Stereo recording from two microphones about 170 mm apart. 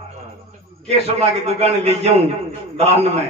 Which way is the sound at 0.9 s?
35° right (ahead or behind).